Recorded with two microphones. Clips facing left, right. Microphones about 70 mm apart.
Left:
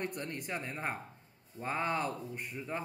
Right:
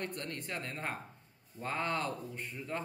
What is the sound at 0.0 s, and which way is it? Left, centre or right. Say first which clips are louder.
Speech: left 2 dB; centre.